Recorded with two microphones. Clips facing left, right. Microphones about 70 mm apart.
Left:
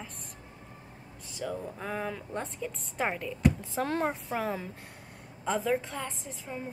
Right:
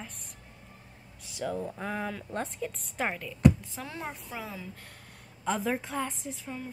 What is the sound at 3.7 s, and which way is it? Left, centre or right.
Speech, left.